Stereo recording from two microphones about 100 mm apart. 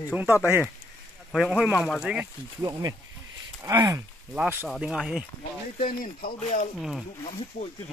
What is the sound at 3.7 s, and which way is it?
Speech, 40° right (ahead or behind).